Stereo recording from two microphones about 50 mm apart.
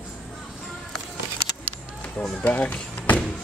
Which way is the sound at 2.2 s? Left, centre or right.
Left.